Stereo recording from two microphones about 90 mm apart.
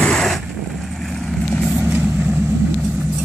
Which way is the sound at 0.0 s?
5° left (ahead or behind).